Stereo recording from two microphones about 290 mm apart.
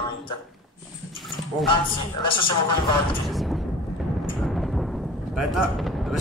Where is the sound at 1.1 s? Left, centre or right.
Centre.